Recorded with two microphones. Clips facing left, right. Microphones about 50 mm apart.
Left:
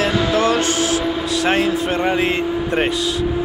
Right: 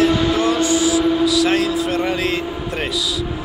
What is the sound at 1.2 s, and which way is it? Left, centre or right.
A man's voice, left.